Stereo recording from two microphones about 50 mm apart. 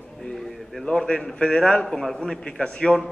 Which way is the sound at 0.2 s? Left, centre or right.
Centre.